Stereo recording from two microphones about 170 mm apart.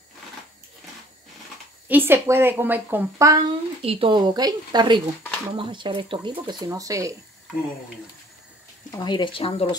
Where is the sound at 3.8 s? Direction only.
35° right (ahead or behind).